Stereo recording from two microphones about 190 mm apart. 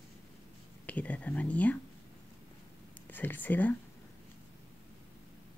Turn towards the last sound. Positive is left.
turn(degrees=10)  # may be behind; listen again after turning